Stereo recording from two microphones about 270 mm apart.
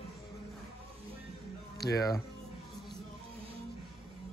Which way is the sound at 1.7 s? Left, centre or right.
Left.